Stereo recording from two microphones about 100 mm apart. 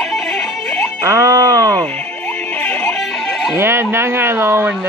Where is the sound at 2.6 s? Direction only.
10° left (ahead or behind).